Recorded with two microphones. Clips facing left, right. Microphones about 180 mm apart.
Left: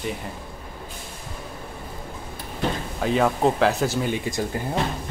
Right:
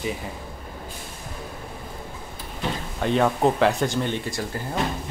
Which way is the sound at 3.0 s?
Centre (ahead or behind).